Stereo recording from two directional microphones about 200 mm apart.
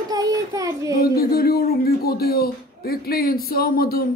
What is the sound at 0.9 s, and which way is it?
Speech, 50° left (ahead or behind).